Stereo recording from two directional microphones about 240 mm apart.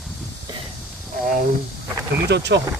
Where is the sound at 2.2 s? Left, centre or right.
Right.